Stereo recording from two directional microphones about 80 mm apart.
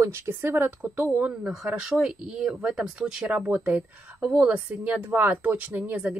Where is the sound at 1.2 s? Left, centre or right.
Centre.